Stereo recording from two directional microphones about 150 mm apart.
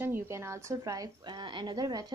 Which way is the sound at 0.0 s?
15° right (ahead or behind).